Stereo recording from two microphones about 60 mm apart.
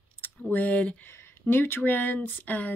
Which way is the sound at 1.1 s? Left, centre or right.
Left.